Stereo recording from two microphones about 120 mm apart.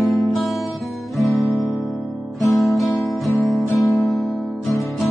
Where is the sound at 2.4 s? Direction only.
Centre (ahead or behind).